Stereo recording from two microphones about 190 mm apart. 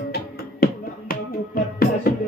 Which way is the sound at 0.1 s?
50° left (ahead or behind).